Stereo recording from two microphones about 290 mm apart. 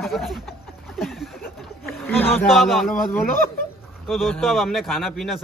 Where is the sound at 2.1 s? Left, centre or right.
Centre.